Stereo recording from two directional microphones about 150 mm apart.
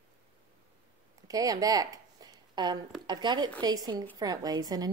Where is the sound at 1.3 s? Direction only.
25° right (ahead or behind).